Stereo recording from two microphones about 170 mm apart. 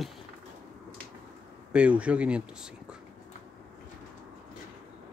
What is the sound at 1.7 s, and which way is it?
Speech, 5° right (ahead or behind).